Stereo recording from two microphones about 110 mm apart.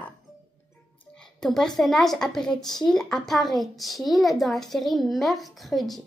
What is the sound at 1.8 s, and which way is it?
A woman's voice, centre (ahead or behind).